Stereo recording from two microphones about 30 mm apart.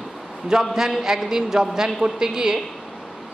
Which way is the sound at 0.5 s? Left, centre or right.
Centre.